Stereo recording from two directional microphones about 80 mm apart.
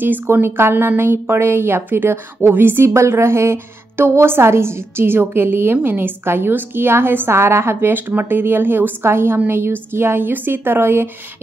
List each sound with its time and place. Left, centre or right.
0.0 s speech: right